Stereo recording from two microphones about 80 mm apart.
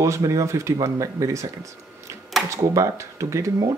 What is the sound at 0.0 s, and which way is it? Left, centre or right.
Speech, right.